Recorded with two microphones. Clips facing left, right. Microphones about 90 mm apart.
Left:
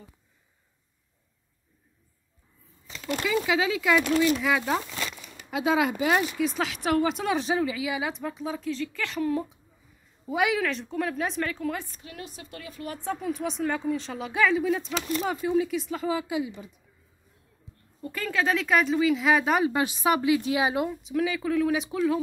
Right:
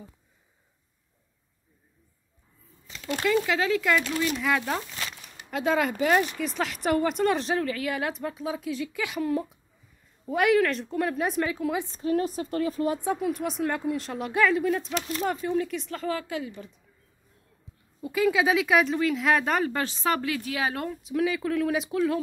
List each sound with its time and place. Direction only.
3.3 s speech: 5° left (ahead or behind)
12.0 s a woman's voice: 40° right (ahead or behind)
12.8 s speech: 20° right (ahead or behind)
13.1 s speech: centre (ahead or behind)
18.0 s speech: 5° right (ahead or behind)